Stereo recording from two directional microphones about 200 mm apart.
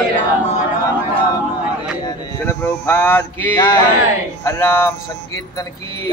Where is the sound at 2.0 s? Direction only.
10° left (ahead or behind).